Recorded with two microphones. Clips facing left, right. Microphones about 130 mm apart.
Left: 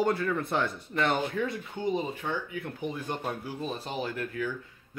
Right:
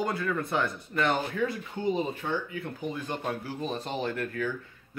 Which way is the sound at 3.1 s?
10° left (ahead or behind).